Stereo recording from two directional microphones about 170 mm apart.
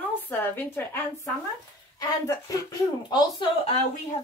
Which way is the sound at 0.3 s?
10° left (ahead or behind).